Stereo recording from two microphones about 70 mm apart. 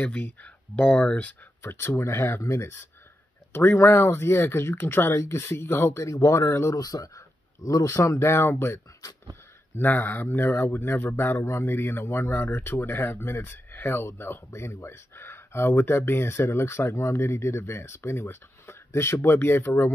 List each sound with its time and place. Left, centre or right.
0.0 s speech: left
1.6 s speech: left
6.0 s speech: left
6.7 s speech: left
9.8 s speech: left